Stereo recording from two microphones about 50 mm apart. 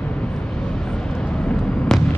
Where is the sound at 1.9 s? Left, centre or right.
Centre.